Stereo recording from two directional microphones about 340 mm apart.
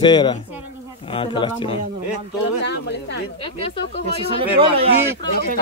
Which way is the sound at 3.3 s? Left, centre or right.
Centre.